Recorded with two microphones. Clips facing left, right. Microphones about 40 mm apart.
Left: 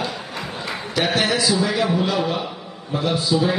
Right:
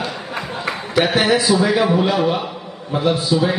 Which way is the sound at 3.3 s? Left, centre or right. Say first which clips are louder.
Left 1 dB; centre.